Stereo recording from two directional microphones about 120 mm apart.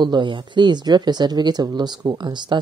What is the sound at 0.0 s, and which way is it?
Speech, 40° right (ahead or behind).